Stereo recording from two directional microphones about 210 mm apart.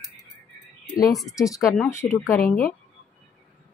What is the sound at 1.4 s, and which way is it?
Speech, 15° left (ahead or behind).